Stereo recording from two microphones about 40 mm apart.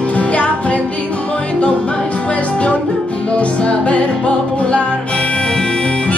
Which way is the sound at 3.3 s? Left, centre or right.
Left.